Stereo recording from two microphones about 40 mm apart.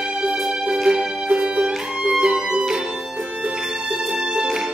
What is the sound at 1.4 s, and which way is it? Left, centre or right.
Music, centre.